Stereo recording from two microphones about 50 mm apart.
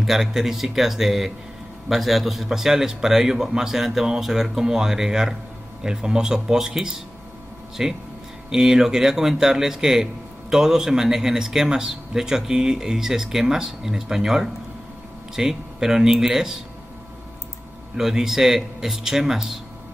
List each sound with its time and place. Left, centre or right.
0.0 s a man's voice: centre
17.9 s a man's voice: centre